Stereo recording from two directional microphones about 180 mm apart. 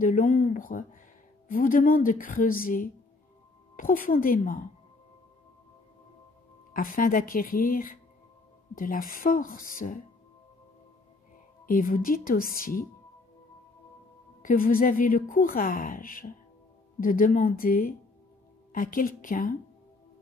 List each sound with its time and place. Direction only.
0.0 s a woman's voice: 50° left (ahead or behind)
6.7 s a woman's voice: 50° left (ahead or behind)
11.6 s a woman's voice: 50° left (ahead or behind)
14.4 s a woman's voice: 50° left (ahead or behind)